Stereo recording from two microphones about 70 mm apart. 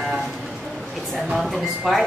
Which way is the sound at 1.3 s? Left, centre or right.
Centre.